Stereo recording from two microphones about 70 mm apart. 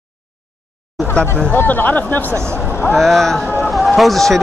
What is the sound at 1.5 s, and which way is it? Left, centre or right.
Speech, left.